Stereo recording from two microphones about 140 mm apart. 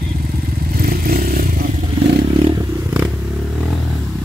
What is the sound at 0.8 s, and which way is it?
Vehicle, 90° right.